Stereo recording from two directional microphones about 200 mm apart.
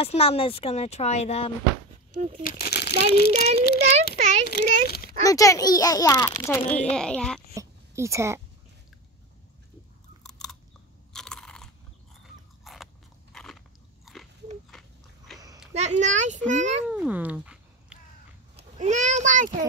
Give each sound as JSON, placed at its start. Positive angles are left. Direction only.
{"t": 0.0, "sound": "speech", "side_deg": 30}
{"t": 2.4, "sound": "a child's voice", "side_deg": 50}
{"t": 5.2, "sound": "a child's voice", "side_deg": 15}
{"t": 6.7, "sound": "speech", "side_deg": 5}
{"t": 7.5, "sound": "a sound", "side_deg": -15}
{"t": 10.4, "sound": "chewing", "side_deg": 5}
{"t": 11.1, "sound": "crunch", "side_deg": 5}
{"t": 12.6, "sound": "biting", "side_deg": 0}
{"t": 14.1, "sound": "dog", "side_deg": 0}
{"t": 14.7, "sound": "a sound", "side_deg": 0}
{"t": 15.7, "sound": "a child's voice", "side_deg": -35}
{"t": 16.8, "sound": "cat", "side_deg": -5}
{"t": 18.6, "sound": "a sound", "side_deg": -35}